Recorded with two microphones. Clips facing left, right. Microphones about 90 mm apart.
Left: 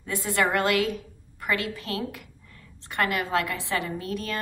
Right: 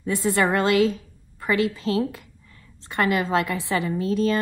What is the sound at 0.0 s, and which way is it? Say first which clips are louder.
A woman's voice: right 4 dB; 25° right (ahead or behind).